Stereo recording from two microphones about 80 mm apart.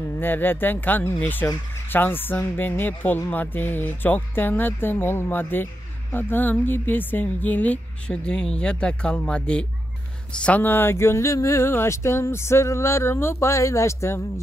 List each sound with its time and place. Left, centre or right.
0.2 s a woman's voice: left